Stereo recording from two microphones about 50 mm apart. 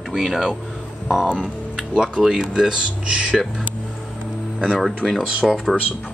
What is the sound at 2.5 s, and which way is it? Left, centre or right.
Speech, centre.